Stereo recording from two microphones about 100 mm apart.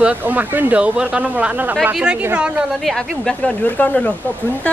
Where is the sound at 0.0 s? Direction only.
15° right (ahead or behind).